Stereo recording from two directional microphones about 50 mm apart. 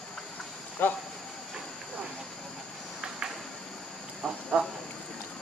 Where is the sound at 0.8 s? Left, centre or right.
Left.